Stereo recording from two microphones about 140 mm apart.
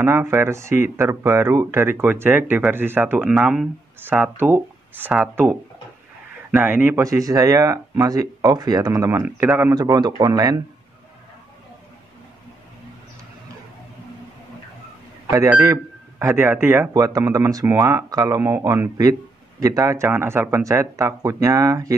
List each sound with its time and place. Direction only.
0.0 s speech: 20° right (ahead or behind)
9.8 s speech: 30° right (ahead or behind)
15.2 s speech: 20° right (ahead or behind)